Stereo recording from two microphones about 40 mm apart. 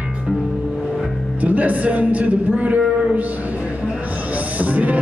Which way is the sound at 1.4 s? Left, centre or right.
Right.